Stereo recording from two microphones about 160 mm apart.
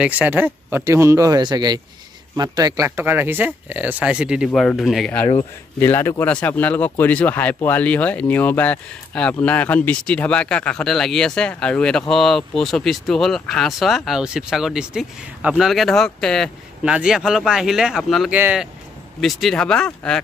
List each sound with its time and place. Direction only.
0.0 s speech: 10° right (ahead or behind)
4.5 s speech: 5° left (ahead or behind)
5.8 s speech: 15° left (ahead or behind); by 18.7 s 10° right (ahead or behind)
19.2 s speech: 5° left (ahead or behind)